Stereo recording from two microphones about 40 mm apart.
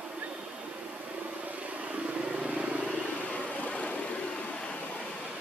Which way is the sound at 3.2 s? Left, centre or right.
Left.